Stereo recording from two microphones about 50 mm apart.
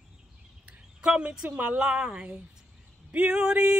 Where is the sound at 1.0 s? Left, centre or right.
Centre.